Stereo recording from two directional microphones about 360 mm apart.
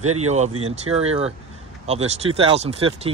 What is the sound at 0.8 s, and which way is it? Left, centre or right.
Speech, centre.